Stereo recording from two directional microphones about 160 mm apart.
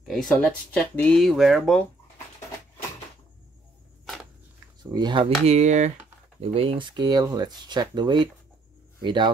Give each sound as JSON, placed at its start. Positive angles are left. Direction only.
{"t": 0.0, "sound": "speech", "side_deg": 0}
{"t": 4.0, "sound": "walk", "side_deg": 0}
{"t": 4.9, "sound": "speech", "side_deg": -30}
{"t": 6.4, "sound": "speech", "side_deg": -35}